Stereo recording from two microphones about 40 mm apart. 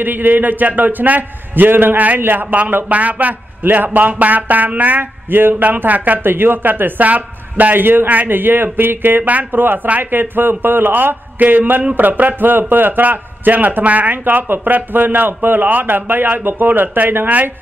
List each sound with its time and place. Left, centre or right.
0.0 s a man's voice: right
2.9 s a man's voice: right
6.2 s a man's voice: right
6.7 s speech: right
7.7 s a man's voice: right
9.2 s speech: right
9.5 s a man's voice: right